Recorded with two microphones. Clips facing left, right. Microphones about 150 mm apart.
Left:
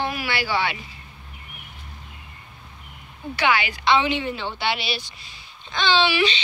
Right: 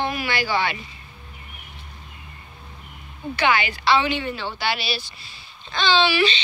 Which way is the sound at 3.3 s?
10° left (ahead or behind).